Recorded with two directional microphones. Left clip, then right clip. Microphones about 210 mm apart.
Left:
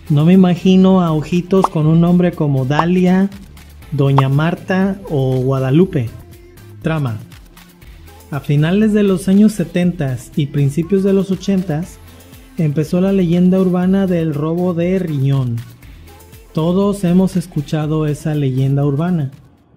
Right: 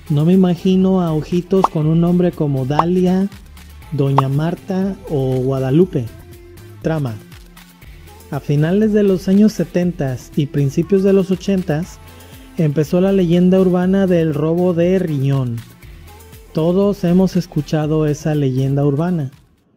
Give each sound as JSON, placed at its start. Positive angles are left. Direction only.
{"t": 0.1, "sound": "speech", "side_deg": -20}
{"t": 4.1, "sound": "speech", "side_deg": 0}
{"t": 4.4, "sound": "speech", "side_deg": -20}
{"t": 6.8, "sound": "speech", "side_deg": -30}
{"t": 8.3, "sound": "speech", "side_deg": -30}
{"t": 16.5, "sound": "speech", "side_deg": -30}